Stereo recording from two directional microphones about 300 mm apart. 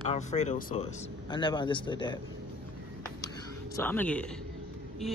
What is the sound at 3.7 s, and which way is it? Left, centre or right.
Speech, centre.